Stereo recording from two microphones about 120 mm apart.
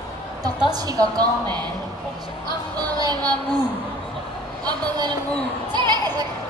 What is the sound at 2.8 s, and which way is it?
Music, 35° right (ahead or behind).